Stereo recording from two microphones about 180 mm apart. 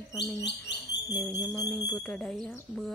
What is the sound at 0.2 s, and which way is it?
Bird, 70° left (ahead or behind).